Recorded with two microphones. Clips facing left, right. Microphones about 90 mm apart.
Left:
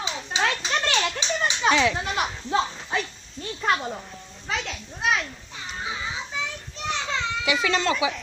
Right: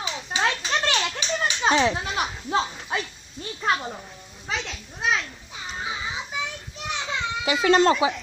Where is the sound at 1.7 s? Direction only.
30° right (ahead or behind).